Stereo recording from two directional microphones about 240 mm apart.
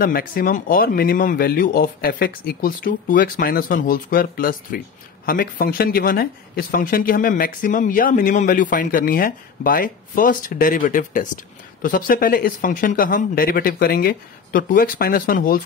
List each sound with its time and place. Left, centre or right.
0.0 s speech: left